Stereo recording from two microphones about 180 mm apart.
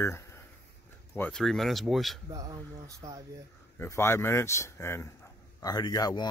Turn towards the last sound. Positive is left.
turn(degrees=25)  # may be behind; listen again after turning